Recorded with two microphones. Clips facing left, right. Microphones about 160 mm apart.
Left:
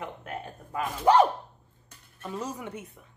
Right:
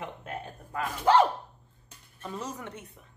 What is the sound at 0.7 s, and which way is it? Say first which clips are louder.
Speech: left 2 dB; 15° left (ahead or behind).